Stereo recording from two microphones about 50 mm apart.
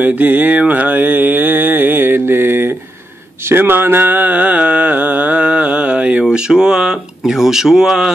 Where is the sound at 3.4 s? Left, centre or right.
Right.